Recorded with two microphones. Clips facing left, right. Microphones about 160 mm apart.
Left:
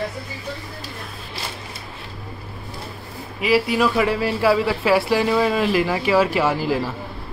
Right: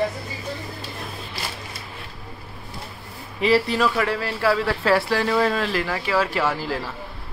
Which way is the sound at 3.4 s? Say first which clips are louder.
Left 1 dB; 10° left (ahead or behind).